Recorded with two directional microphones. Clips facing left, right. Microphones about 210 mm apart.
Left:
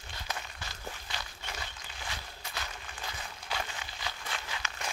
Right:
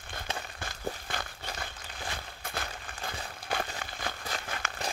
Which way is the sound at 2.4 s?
55° right (ahead or behind).